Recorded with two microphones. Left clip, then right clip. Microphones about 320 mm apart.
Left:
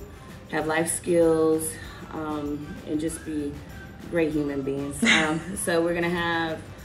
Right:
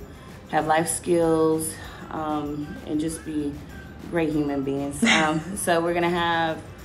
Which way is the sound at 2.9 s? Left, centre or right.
Centre.